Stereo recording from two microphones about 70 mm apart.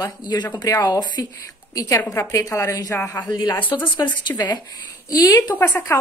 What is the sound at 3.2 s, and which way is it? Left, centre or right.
Speech, left.